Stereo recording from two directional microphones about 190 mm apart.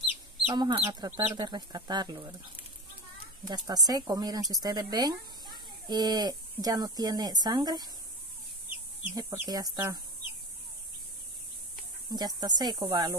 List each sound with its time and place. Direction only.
0.5 s speech: 20° right (ahead or behind)
3.4 s speech: 20° right (ahead or behind)
8.6 s chicken: 10° right (ahead or behind)
9.2 s speech: 20° right (ahead or behind)
12.1 s speech: 20° right (ahead or behind)